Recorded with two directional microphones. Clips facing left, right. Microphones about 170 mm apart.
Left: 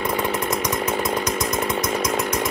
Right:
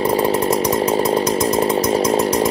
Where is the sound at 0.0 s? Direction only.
30° right (ahead or behind).